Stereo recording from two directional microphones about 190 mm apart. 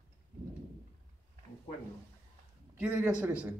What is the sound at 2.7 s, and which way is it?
Speech, 5° right (ahead or behind).